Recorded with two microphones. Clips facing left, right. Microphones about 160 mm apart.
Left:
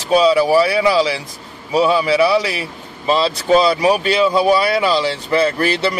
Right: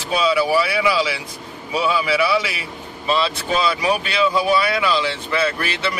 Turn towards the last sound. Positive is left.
turn(degrees=35)  # may be behind; listen again after turning